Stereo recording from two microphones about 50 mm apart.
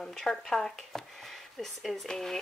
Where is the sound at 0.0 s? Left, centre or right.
Centre.